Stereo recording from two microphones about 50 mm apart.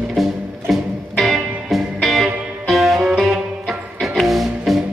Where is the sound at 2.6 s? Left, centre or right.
Centre.